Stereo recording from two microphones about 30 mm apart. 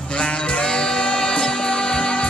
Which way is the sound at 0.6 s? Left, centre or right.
Left.